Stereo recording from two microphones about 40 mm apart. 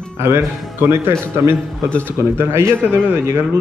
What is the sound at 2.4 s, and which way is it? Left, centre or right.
Speech, right.